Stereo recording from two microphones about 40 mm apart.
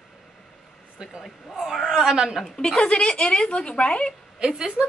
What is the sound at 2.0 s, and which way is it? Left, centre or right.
Speech, centre.